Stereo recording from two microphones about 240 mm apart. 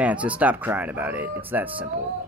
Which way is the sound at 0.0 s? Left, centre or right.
Centre.